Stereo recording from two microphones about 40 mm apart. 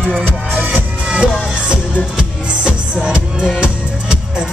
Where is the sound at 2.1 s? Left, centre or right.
Centre.